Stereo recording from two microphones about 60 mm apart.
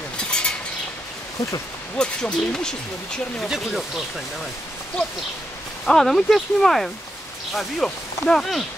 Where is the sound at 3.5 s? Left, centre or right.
Centre.